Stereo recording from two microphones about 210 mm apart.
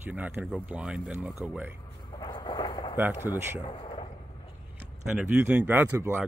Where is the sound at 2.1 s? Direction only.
20° left (ahead or behind).